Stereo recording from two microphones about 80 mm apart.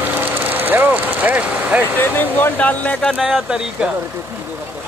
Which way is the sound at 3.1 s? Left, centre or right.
Centre.